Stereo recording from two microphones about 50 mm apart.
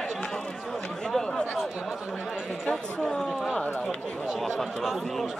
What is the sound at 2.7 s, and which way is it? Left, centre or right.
Speech, centre.